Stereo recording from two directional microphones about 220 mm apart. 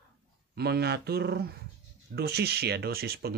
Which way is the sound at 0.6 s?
45° right (ahead or behind).